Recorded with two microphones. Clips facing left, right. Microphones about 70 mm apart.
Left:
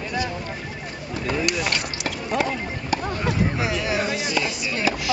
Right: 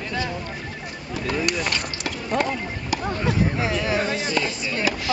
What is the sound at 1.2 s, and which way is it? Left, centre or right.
Speech, centre.